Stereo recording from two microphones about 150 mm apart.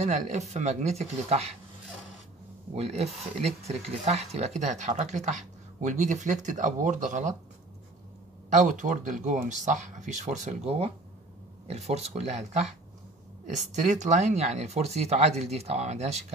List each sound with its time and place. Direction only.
0.0 s speech: 50° right (ahead or behind)
2.7 s speech: 45° right (ahead or behind)
8.5 s speech: 55° right (ahead or behind)